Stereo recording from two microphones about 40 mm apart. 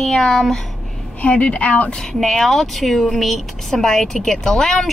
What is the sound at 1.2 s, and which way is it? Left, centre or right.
Speech, left.